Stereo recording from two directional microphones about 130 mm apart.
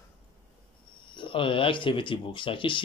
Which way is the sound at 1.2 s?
40° left (ahead or behind).